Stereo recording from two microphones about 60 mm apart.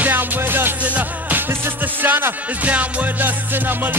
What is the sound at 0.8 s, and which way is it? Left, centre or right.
Music, right.